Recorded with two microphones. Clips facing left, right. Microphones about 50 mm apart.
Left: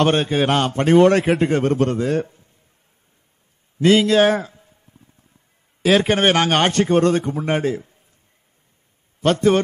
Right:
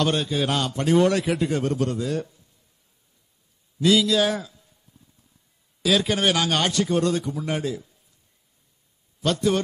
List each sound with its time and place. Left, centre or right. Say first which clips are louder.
0.0 s a man's voice: left 6 dB; left
3.8 s a sound: left 6 dB; left
5.8 s a man's voice: left 6 dB; left
9.2 s a man's voice: left 6 dB; left